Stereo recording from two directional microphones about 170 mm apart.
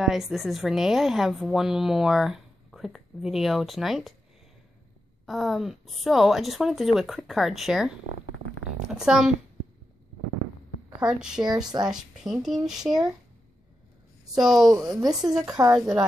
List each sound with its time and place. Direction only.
0.0 s a woman's voice: centre (ahead or behind)
5.2 s a woman's voice: centre (ahead or behind)
8.7 s a sound: 5° right (ahead or behind)
11.0 s a woman's voice: 5° right (ahead or behind)
14.3 s speech: centre (ahead or behind)
14.6 s speech: 20° right (ahead or behind)